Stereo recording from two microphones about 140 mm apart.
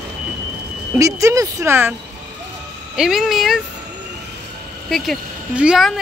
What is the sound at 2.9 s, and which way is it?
Speech, 5° right (ahead or behind).